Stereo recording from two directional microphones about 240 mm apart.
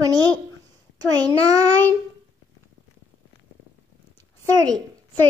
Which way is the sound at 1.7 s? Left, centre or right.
Centre.